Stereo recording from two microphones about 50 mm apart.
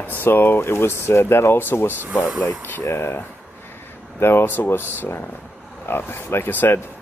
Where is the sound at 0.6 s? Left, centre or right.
Left.